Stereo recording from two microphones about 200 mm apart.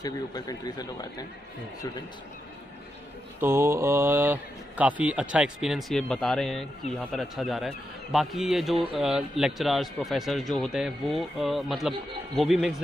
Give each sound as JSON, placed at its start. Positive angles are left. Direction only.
{"t": 0.0, "sound": "a man's voice", "side_deg": 20}
{"t": 3.3, "sound": "speech", "side_deg": -10}